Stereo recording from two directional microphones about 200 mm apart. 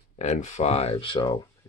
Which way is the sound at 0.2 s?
35° left (ahead or behind).